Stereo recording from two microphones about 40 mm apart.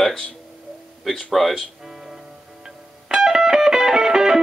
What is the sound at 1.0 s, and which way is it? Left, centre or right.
Speech, centre.